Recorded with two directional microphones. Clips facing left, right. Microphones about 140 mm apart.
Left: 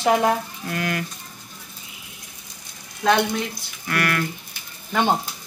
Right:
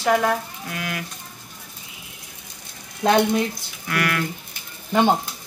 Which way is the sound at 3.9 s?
10° right (ahead or behind).